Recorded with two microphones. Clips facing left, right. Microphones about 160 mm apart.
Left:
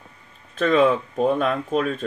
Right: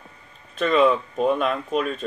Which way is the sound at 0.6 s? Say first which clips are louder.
Left 1 dB; 50° left (ahead or behind).